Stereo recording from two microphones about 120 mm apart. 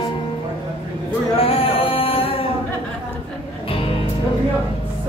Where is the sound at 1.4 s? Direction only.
50° left (ahead or behind).